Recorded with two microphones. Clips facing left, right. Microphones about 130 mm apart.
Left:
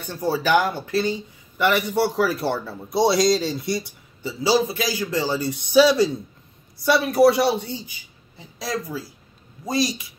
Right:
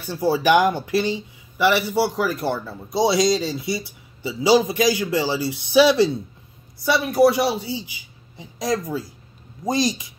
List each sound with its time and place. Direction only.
0.0 s speech: 10° right (ahead or behind)
4.2 s a man's voice: 15° right (ahead or behind)
8.4 s speech: 20° right (ahead or behind)